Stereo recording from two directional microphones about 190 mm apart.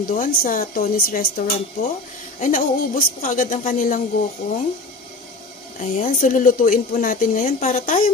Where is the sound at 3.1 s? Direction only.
45° left (ahead or behind).